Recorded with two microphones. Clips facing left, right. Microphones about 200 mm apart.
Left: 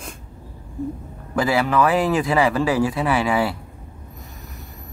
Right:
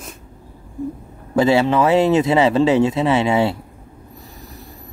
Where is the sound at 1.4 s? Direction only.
25° right (ahead or behind).